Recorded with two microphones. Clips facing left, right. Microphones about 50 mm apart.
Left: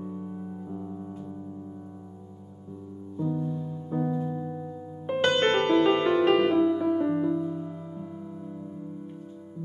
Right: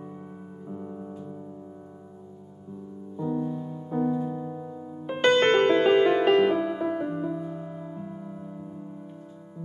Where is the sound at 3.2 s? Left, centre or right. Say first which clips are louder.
Right 1 dB; right.